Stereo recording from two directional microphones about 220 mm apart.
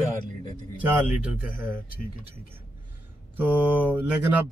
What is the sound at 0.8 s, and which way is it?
A man's voice, 5° right (ahead or behind).